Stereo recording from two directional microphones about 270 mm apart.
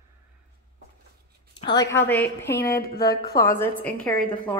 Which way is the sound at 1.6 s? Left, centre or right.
Centre.